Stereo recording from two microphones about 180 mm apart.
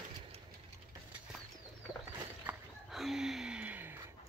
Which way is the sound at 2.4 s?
Centre (ahead or behind).